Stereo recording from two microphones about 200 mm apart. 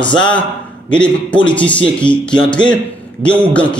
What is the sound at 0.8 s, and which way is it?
A man's voice, 5° left (ahead or behind).